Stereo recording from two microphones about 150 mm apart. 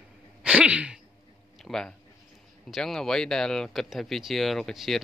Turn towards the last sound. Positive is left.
turn(degrees=0)  # may be behind; listen again after turning